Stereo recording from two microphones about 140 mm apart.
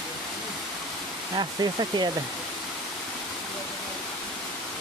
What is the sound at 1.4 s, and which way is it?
Speech, 30° right (ahead or behind).